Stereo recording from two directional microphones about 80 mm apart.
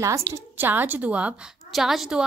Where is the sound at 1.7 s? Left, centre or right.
Centre.